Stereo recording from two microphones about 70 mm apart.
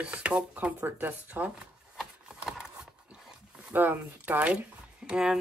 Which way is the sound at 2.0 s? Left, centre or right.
Centre.